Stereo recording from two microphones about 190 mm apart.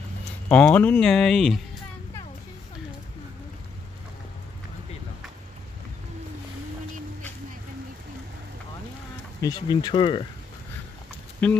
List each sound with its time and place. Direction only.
0.5 s speech: 5° left (ahead or behind)
9.4 s speech: 20° left (ahead or behind)
11.4 s speech: 5° left (ahead or behind)